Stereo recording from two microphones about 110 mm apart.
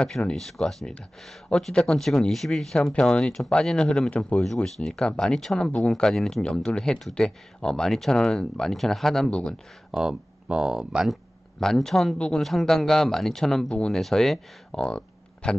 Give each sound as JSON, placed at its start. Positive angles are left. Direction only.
{"t": 0.0, "sound": "speech", "side_deg": 10}
{"t": 9.9, "sound": "speech", "side_deg": -5}